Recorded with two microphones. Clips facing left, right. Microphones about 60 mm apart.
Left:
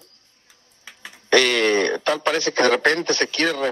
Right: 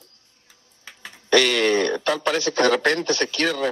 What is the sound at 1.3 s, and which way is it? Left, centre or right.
A man's voice, left.